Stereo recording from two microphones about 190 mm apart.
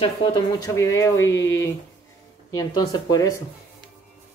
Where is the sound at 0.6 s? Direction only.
15° left (ahead or behind).